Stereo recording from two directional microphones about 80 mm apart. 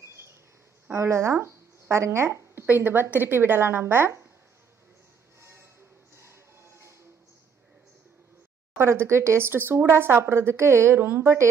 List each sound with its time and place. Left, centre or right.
0.0 s a sound: right
0.8 s speech: right
6.1 s music: right
8.7 s speech: right